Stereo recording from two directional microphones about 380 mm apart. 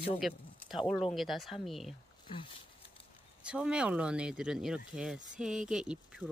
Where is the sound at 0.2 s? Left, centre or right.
Centre.